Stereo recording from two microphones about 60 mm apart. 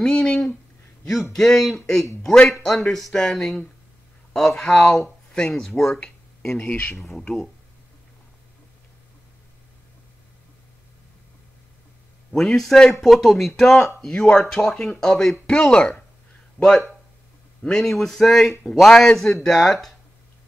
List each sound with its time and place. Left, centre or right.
0.0 s speech: centre
2.2 s speech: centre
12.3 s speech: centre
16.6 s speech: left
17.6 s speech: centre